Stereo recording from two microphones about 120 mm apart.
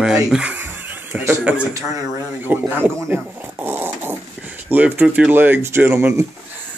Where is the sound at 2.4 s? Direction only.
15° right (ahead or behind).